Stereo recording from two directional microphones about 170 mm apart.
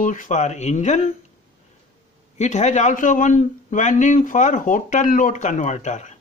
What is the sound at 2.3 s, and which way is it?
Speech, 45° left (ahead or behind).